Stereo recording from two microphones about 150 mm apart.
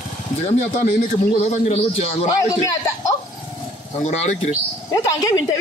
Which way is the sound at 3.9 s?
50° left (ahead or behind).